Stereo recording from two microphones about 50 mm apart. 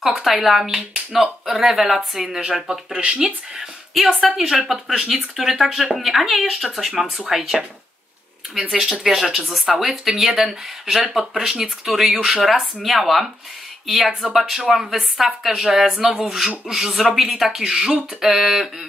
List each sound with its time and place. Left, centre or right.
0.0 s speech: centre
2.9 s speech: right
3.5 s speech: centre
9.0 s speech: centre